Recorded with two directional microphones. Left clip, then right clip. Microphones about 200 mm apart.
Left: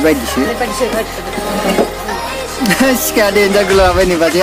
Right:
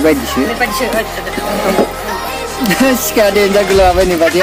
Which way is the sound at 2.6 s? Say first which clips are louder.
Even; centre (ahead or behind).